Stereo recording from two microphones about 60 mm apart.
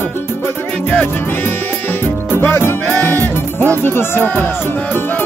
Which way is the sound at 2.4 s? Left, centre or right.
Left.